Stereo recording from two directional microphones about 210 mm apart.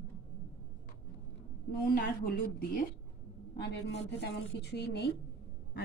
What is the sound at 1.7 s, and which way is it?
Speech, 45° left (ahead or behind).